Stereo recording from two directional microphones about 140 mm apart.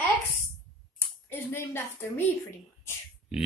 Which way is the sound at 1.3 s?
15° left (ahead or behind).